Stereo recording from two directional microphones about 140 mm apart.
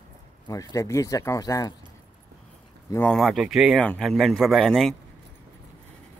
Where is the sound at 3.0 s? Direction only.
Centre (ahead or behind).